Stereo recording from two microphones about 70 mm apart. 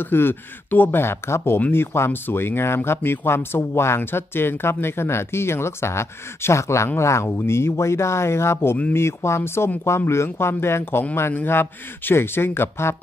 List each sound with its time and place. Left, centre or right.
0.0 s speech: left